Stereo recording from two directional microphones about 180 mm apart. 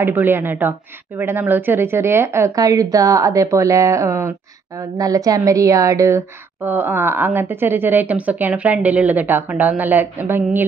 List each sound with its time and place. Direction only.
0.0 s a woman's voice: 10° right (ahead or behind)